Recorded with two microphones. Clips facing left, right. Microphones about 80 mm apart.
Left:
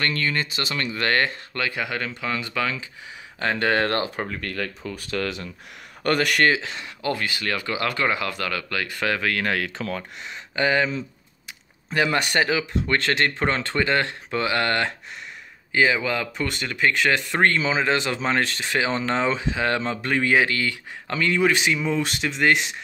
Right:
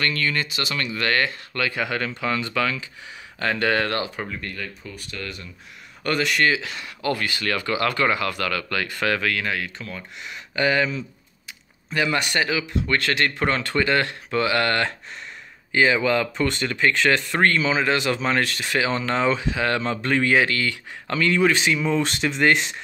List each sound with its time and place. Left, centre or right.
0.0 s speech: left; by 2.4 s centre
2.4 s speech: centre; by 4.3 s left
4.4 s speech: left
6.0 s speech: left
6.5 s speech: left
8.6 s speech: centre
9.6 s speech: left
10.2 s speech: left
15.7 s speech: centre